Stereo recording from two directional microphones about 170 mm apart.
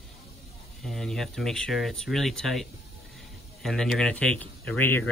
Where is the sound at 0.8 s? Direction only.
Centre (ahead or behind).